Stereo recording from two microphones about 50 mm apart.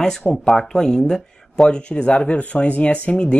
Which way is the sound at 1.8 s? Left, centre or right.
Left.